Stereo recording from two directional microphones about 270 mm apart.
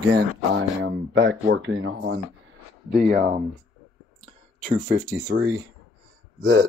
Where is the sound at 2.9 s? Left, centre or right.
Right.